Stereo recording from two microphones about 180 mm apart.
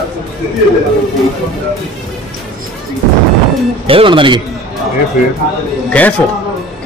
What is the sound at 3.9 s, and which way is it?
Speech, 30° right (ahead or behind).